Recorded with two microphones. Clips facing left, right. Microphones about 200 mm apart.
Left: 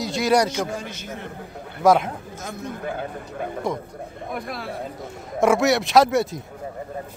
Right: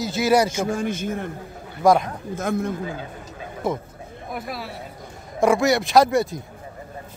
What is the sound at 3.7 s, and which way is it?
A man's voice, 5° right (ahead or behind).